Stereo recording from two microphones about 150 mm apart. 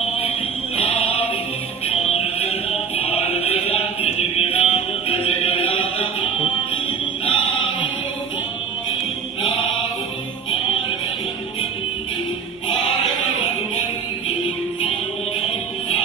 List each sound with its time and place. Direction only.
0.7 s music: 40° left (ahead or behind)